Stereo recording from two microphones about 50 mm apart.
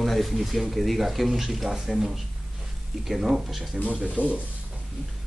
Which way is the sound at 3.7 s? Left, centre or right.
Right.